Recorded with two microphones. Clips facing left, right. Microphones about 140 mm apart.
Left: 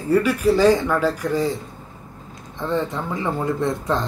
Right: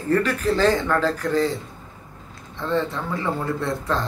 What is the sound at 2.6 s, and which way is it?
Speech, 15° left (ahead or behind).